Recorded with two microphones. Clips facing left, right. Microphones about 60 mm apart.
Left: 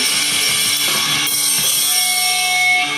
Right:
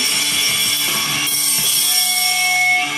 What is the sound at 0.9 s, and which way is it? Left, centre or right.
Music, left.